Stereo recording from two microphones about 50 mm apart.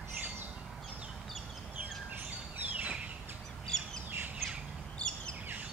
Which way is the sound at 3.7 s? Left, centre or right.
Centre.